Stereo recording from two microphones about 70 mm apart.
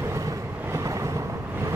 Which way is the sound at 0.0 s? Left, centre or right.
Right.